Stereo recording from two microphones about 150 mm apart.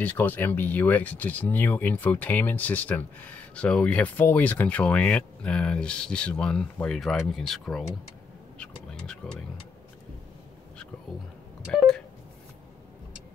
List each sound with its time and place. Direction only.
0.0 s speech: 10° left (ahead or behind)
8.5 s a sound: 5° left (ahead or behind)
11.7 s speech: 5° left (ahead or behind)